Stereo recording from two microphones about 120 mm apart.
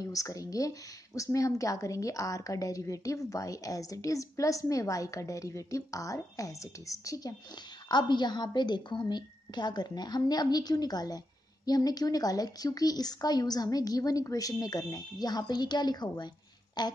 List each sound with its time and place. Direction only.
0.0 s speech: 30° left (ahead or behind)
7.9 s speech: 35° left (ahead or behind)